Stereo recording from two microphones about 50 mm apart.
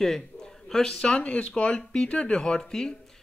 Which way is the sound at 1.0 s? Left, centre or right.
Left.